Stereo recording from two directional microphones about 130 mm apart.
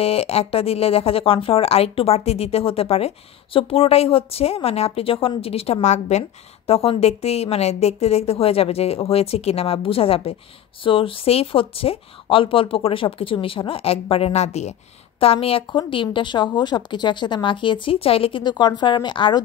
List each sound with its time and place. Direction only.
0.0 s speech: 50° left (ahead or behind)
6.7 s speech: 50° left (ahead or behind)
15.1 s a woman's voice: 50° left (ahead or behind)